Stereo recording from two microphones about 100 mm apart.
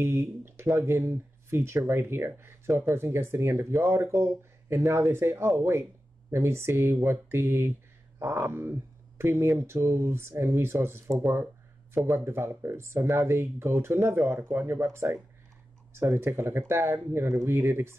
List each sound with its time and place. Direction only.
0.0 s speech: 25° right (ahead or behind)